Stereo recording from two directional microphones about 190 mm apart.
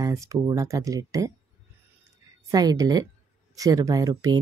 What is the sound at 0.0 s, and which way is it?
Speech, 15° right (ahead or behind).